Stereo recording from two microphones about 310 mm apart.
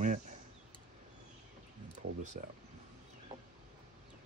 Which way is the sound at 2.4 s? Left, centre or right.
Right.